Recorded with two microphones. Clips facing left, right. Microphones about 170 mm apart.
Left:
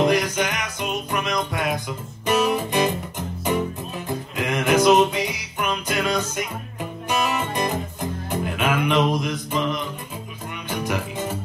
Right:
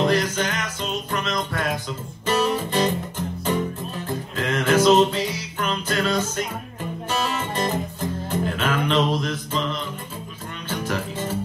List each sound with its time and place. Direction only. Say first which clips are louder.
0.0 s music: left 1 dB; 15° left (ahead or behind)
2.2 s guitar: left 1 dB; 15° left (ahead or behind)
3.4 s music: left 2 dB; 15° left (ahead or behind)